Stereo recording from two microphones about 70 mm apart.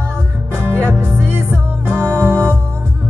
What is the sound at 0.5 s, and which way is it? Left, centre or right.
Music, right.